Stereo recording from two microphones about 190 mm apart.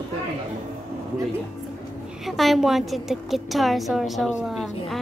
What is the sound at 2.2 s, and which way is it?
A woman's voice, centre (ahead or behind).